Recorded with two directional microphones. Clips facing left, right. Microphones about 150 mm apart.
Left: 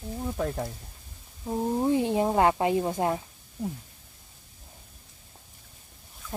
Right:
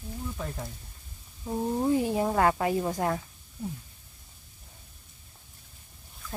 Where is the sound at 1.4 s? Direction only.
15° left (ahead or behind).